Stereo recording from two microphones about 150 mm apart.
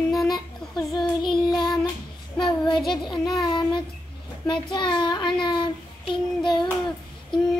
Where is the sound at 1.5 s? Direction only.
30° left (ahead or behind).